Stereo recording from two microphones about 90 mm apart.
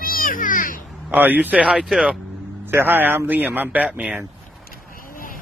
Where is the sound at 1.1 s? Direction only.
20° right (ahead or behind).